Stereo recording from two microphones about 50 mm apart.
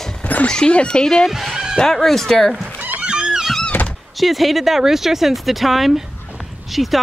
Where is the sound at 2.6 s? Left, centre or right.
Right.